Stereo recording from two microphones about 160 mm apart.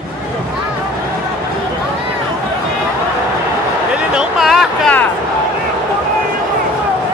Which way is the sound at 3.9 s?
5° right (ahead or behind).